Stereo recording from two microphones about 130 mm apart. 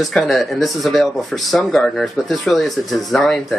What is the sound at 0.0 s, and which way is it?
Speech, centre (ahead or behind).